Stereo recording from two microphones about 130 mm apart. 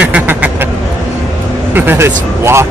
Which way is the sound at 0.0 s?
10° right (ahead or behind).